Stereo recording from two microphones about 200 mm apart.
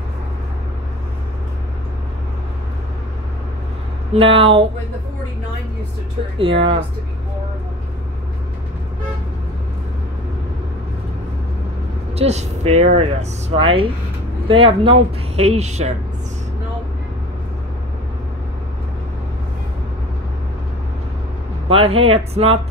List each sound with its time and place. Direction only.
4.1 s speech: 30° right (ahead or behind)
6.3 s speech: 25° right (ahead or behind)
12.2 s speech: 35° right (ahead or behind)
21.6 s speech: 30° right (ahead or behind)